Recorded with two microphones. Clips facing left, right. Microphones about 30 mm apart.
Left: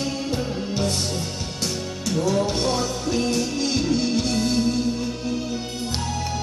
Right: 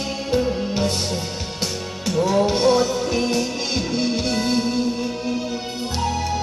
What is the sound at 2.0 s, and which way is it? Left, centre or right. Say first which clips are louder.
Music: right 4 dB; centre.